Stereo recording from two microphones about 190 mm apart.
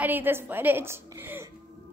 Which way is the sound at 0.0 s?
10° right (ahead or behind).